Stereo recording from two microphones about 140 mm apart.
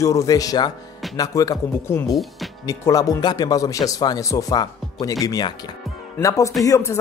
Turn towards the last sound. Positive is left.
turn(degrees=25)  # may be behind; listen again after turning